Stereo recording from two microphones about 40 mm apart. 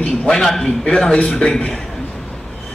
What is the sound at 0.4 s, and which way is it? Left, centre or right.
A man's voice, centre.